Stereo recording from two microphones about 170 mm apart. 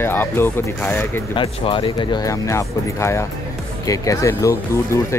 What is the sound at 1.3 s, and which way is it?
Speech, 30° left (ahead or behind).